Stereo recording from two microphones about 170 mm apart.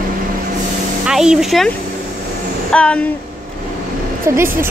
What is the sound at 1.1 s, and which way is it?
Speech, 5° right (ahead or behind).